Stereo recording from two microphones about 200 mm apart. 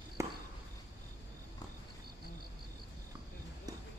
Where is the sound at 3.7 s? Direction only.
20° right (ahead or behind).